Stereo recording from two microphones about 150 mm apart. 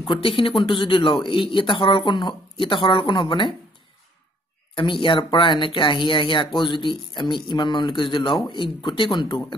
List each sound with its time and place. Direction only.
0.0 s speech: 35° left (ahead or behind)
5.0 s speech: 35° left (ahead or behind)